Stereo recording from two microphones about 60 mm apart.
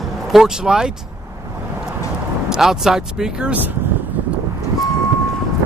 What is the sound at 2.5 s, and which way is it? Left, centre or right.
Speech, centre.